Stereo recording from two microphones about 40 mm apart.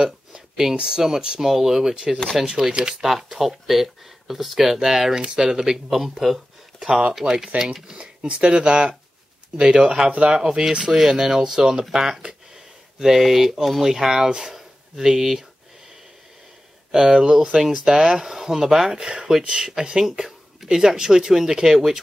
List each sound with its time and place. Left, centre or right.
0.0 s a sound: centre
0.7 s speech: centre
1.5 s speech: centre
2.7 s speech: right; by 6.9 s centre
6.9 s speech: right
7.2 s speech: centre
16.9 s speech: centre